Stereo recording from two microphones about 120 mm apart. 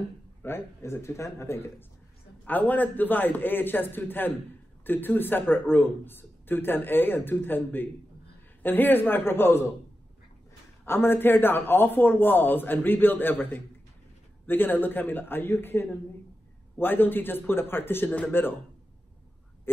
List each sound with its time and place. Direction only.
0.4 s a man's voice: 20° left (ahead or behind)
10.9 s speech: 20° left (ahead or behind)